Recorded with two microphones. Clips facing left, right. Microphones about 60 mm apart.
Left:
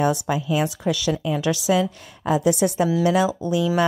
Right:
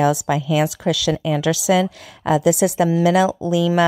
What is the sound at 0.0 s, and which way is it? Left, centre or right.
A woman's voice, right.